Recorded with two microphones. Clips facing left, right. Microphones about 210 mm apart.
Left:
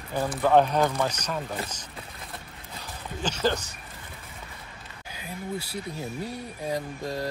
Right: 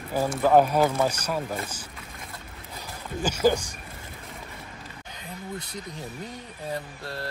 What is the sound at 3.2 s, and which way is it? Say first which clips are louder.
Speech: right 4 dB; 10° right (ahead or behind).